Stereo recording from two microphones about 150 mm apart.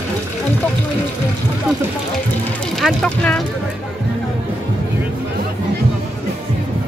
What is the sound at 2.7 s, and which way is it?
Speech, 5° left (ahead or behind).